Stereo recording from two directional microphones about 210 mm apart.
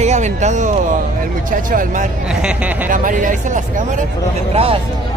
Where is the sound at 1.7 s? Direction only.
40° right (ahead or behind).